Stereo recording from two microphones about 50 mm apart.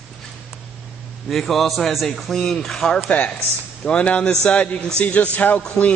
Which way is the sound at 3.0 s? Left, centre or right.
Left.